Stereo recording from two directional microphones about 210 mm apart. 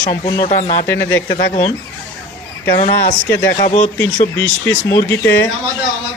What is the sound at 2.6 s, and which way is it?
Speech, 40° left (ahead or behind).